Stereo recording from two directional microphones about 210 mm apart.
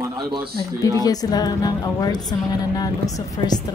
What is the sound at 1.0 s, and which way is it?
A woman's voice, 20° left (ahead or behind).